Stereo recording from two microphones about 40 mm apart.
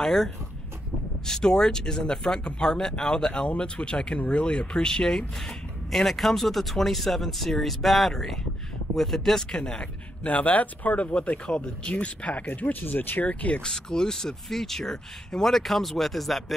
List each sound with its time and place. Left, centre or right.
0.0 s speech: centre
5.0 s speech: centre
10.2 s speech: left
11.4 s speech: left
12.8 s speech: left
13.6 s speech: centre